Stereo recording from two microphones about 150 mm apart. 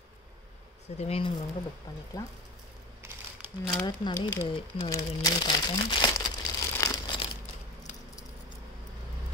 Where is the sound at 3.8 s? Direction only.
30° left (ahead or behind).